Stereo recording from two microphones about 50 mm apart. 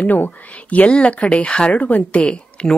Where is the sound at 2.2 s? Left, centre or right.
Centre.